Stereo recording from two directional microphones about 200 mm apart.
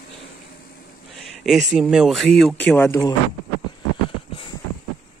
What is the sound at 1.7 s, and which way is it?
Speech, 5° right (ahead or behind).